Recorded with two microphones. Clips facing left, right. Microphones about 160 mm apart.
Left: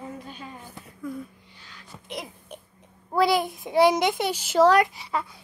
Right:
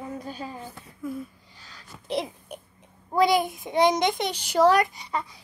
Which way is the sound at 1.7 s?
35° right (ahead or behind).